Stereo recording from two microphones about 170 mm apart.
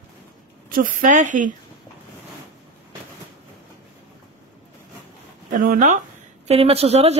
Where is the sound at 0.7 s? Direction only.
55° right (ahead or behind).